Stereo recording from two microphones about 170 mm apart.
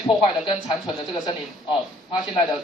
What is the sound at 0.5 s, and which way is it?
Speech, 30° left (ahead or behind).